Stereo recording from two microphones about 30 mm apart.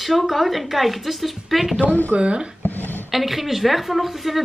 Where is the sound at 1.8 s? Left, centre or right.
Left.